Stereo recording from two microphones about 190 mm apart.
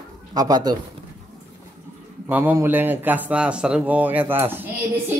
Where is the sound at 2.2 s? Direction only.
10° right (ahead or behind).